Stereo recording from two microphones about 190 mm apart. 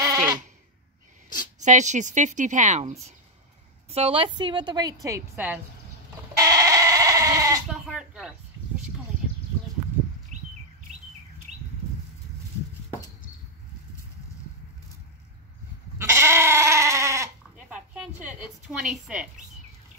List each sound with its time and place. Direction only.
0.0 s sheep: 20° right (ahead or behind)
1.6 s a woman's voice: 40° right (ahead or behind); by 5.6 s 10° right (ahead or behind)
6.3 s goat: 20° right (ahead or behind)
7.6 s speech: 5° right (ahead or behind)
16.0 s goat: 15° right (ahead or behind)
17.9 s a woman's voice: 5° right (ahead or behind)